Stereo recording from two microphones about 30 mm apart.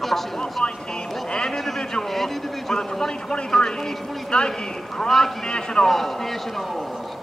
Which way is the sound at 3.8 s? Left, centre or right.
Centre.